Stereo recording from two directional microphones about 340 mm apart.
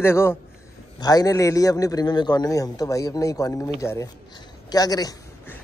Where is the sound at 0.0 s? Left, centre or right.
Centre.